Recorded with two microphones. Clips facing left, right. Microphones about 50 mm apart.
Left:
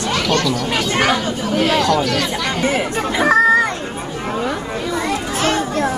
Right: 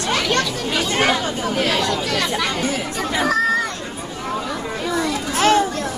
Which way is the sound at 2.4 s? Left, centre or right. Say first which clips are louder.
Left 4 dB; left.